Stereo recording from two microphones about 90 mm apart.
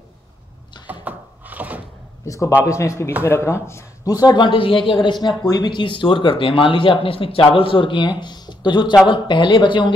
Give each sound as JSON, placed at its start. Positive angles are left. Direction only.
{"t": 1.0, "sound": "a sound", "side_deg": -20}
{"t": 2.2, "sound": "a man's voice", "side_deg": 35}
{"t": 4.1, "sound": "speech", "side_deg": 45}
{"t": 4.5, "sound": "speech", "side_deg": 75}
{"t": 5.0, "sound": "speech", "side_deg": 60}